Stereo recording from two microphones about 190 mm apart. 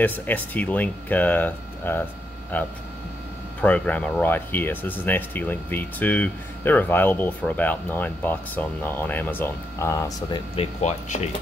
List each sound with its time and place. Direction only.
0.0 s speech: 10° left (ahead or behind)
10.5 s speech: 35° left (ahead or behind)